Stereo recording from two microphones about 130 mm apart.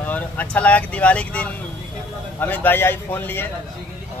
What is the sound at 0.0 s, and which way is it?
Speech, 10° left (ahead or behind).